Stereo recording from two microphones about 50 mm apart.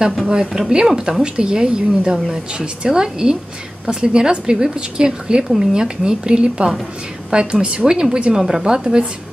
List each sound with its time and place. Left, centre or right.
0.5 s a woman's voice: centre